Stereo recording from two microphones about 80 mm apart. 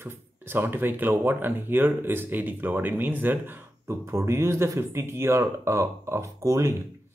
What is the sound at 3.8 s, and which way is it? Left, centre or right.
Speech, right.